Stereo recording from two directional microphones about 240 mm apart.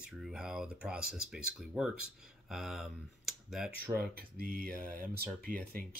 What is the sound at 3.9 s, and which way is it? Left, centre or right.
Speech, right.